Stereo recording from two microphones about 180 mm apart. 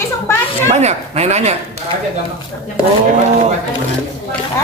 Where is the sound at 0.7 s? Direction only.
40° right (ahead or behind).